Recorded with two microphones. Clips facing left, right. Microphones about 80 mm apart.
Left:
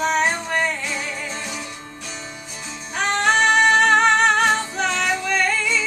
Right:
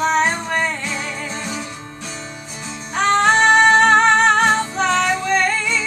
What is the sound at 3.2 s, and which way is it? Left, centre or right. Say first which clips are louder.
Music: right 3 dB; right.